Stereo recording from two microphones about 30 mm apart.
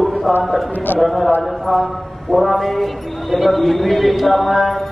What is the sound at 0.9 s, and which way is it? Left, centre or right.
Speech, left.